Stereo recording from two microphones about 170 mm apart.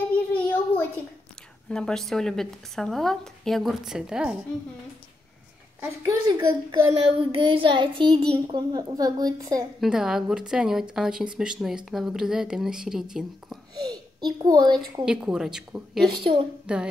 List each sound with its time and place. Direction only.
0.3 s a sound: 10° left (ahead or behind)
1.7 s a woman's voice: 5° left (ahead or behind)
5.8 s a child's voice: 15° right (ahead or behind)
7.1 s child singing: 30° right (ahead or behind)
8.5 s a child's voice: 25° right (ahead or behind)
9.8 s a woman's voice: 5° right (ahead or behind)
13.7 s a child's voice: 25° right (ahead or behind)
15.0 s a woman's voice: 5° right (ahead or behind)
16.1 s a child's voice: 30° right (ahead or behind)
16.7 s a woman's voice: 5° right (ahead or behind)